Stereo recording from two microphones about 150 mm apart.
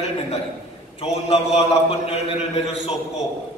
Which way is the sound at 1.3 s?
45° left (ahead or behind).